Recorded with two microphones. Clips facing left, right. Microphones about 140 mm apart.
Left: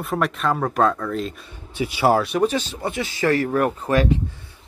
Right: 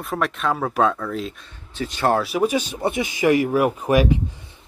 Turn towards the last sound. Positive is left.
turn(degrees=-15)  # may be behind; listen again after turning